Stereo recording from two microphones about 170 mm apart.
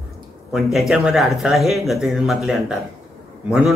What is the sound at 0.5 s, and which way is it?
Speech, centre (ahead or behind).